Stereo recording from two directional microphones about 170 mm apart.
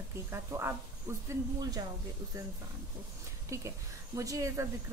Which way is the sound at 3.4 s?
15° right (ahead or behind).